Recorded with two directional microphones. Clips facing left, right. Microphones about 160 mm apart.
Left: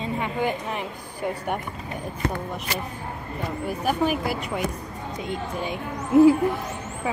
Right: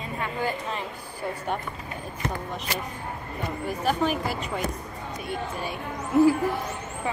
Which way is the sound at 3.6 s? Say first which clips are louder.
Left 1 dB; 10° left (ahead or behind).